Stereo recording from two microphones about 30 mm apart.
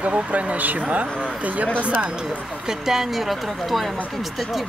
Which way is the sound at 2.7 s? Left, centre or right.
Centre.